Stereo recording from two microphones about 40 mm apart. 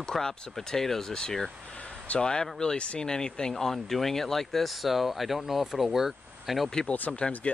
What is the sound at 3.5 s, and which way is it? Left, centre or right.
Speech, centre.